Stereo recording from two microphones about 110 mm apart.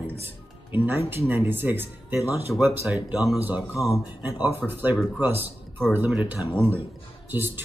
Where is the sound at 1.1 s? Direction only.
20° right (ahead or behind).